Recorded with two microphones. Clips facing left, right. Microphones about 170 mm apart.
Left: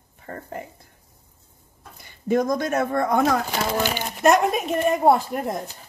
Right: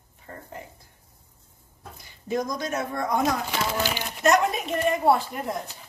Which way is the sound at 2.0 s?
55° left (ahead or behind).